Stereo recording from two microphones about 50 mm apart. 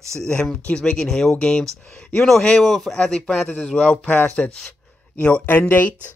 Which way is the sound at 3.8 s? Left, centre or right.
Left.